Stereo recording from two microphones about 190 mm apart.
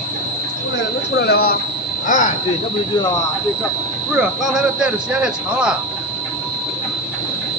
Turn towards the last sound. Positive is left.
turn(degrees=-5)  # may be behind; listen again after turning